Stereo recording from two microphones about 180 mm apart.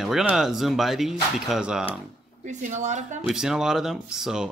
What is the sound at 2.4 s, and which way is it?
Speech, 40° right (ahead or behind).